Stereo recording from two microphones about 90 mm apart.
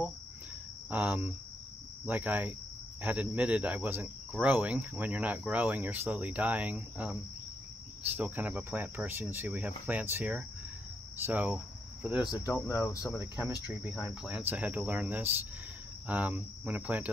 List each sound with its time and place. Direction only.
0.8 s speech: 15° right (ahead or behind)
11.2 s speech: 15° right (ahead or behind)
12.3 s speech: 40° left (ahead or behind)
13.4 s speech: 10° right (ahead or behind)